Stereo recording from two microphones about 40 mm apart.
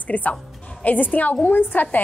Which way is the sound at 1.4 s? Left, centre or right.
Left.